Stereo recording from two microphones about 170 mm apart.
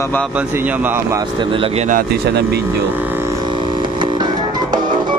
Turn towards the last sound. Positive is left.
turn(degrees=-25)  # may be behind; listen again after turning